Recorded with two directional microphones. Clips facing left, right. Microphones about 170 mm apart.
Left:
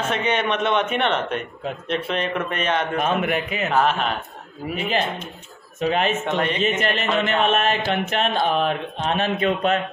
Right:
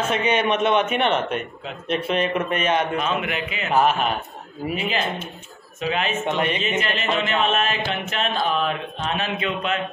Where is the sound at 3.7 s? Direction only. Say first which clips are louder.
Right 2 dB; 10° right (ahead or behind).